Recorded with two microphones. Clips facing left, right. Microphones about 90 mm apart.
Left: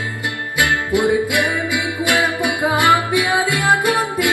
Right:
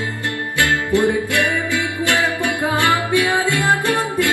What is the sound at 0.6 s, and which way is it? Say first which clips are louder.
Music: even; 15° left (ahead or behind).